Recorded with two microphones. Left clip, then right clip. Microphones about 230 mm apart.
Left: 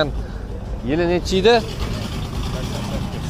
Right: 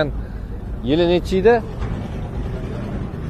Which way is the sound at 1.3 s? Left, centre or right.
Centre.